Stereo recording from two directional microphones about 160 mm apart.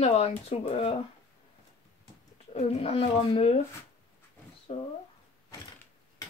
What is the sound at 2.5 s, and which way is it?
Speech, 40° left (ahead or behind).